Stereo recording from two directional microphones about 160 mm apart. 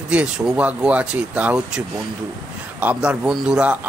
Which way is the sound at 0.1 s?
10° right (ahead or behind).